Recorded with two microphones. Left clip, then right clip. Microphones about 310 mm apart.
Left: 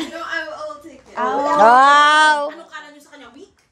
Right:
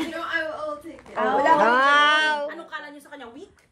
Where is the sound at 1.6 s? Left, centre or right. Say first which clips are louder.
Left 7 dB; centre.